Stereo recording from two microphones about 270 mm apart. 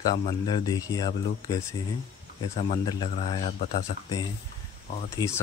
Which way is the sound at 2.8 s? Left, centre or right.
Centre.